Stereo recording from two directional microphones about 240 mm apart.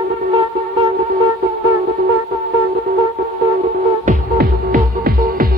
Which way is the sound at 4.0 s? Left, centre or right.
Right.